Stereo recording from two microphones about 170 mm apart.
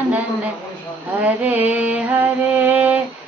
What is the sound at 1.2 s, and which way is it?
A woman's voice, 10° right (ahead or behind).